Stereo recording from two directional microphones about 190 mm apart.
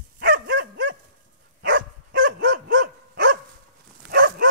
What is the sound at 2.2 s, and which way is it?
Dog, 45° right (ahead or behind).